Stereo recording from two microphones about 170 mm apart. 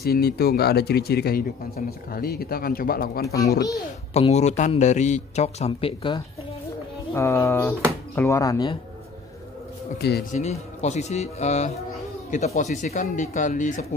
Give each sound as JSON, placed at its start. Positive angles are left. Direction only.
{"t": 0.0, "sound": "speech", "side_deg": 65}
{"t": 4.1, "sound": "a man's voice", "side_deg": 40}
{"t": 7.2, "sound": "speech", "side_deg": 15}
{"t": 9.9, "sound": "speech", "side_deg": 70}
{"t": 10.3, "sound": "a man's voice", "side_deg": 40}